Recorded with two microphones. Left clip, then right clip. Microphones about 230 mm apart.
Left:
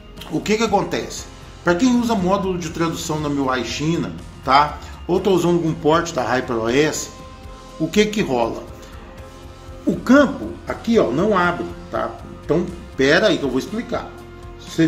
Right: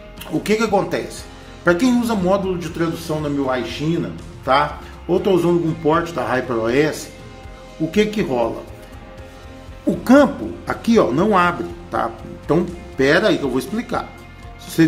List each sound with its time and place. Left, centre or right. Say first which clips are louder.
0.4 s a man's voice: right 1 dB; centre
5.1 s a man's voice: right 1 dB; centre
9.8 s speech: right 1 dB; centre
14.8 s speech: right 2 dB; centre